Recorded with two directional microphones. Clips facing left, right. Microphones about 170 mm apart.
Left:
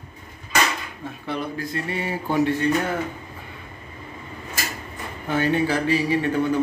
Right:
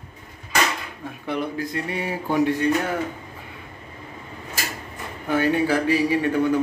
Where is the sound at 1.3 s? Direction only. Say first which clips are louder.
Right 2 dB; 15° right (ahead or behind).